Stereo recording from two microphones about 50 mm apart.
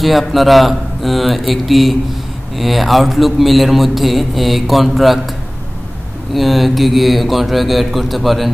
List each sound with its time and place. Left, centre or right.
0.0 s a man's voice: centre
6.3 s a man's voice: centre